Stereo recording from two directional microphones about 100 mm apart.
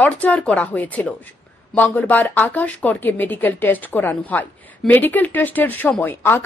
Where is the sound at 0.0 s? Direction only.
15° left (ahead or behind).